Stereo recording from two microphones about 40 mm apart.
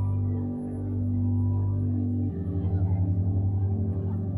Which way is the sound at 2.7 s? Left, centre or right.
Right.